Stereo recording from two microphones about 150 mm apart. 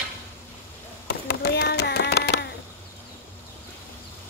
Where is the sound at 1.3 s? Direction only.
90° left.